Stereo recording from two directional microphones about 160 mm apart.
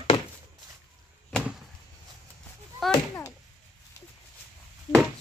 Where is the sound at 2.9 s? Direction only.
20° left (ahead or behind).